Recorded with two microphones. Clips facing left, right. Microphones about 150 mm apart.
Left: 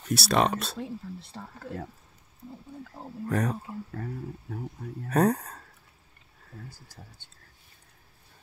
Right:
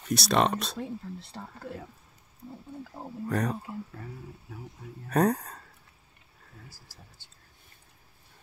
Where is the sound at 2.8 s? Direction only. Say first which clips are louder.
Right 2 dB; 10° right (ahead or behind).